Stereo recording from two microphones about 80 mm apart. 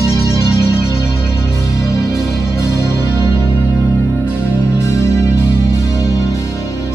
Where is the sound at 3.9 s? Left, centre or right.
Left.